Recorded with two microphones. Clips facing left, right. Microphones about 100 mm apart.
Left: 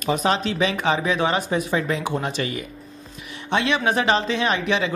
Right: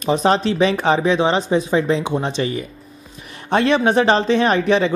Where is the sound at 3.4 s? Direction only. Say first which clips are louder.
Right 5 dB; 40° right (ahead or behind).